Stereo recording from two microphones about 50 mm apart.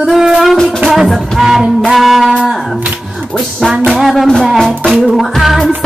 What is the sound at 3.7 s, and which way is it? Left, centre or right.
Music, centre.